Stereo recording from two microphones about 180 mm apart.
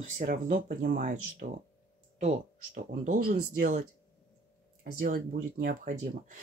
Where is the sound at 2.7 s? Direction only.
45° right (ahead or behind).